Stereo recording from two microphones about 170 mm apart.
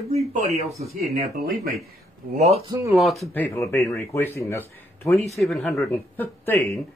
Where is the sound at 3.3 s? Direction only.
15° left (ahead or behind).